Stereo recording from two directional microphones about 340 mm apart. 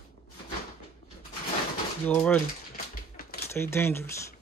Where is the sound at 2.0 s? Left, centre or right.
Centre.